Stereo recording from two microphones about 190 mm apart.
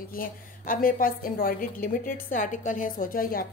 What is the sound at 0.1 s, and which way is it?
A woman's voice, 50° left (ahead or behind).